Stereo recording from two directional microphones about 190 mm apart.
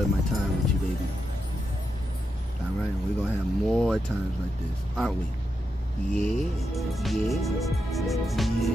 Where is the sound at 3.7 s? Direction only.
Centre (ahead or behind).